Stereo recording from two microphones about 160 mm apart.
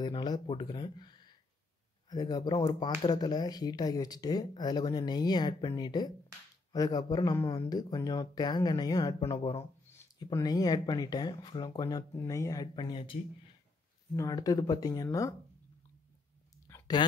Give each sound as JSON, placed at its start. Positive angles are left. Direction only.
{"t": 0.0, "sound": "speech", "side_deg": 25}
{"t": 9.2, "sound": "speech", "side_deg": 35}
{"t": 9.6, "sound": "speech", "side_deg": 20}
{"t": 16.6, "sound": "a sound", "side_deg": 15}